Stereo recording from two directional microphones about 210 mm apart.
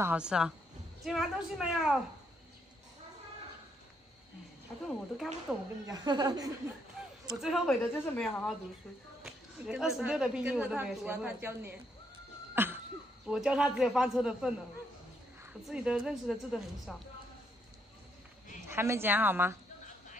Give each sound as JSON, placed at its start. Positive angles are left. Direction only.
{"t": 0.0, "sound": "a woman's voice", "side_deg": -5}
{"t": 4.8, "sound": "a woman's voice", "side_deg": 0}
{"t": 5.9, "sound": "speech", "side_deg": -20}
{"t": 7.3, "sound": "a woman's voice", "side_deg": 0}
{"t": 12.5, "sound": "cough", "side_deg": -10}
{"t": 13.3, "sound": "a woman's voice", "side_deg": -5}
{"t": 18.7, "sound": "speech", "side_deg": -10}